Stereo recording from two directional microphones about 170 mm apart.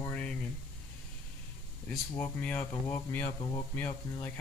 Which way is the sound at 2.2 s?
10° left (ahead or behind).